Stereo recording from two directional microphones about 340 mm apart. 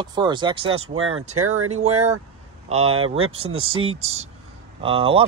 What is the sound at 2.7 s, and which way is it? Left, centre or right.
Speech, centre.